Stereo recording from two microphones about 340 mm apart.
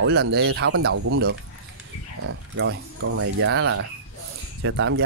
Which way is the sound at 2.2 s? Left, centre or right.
Right.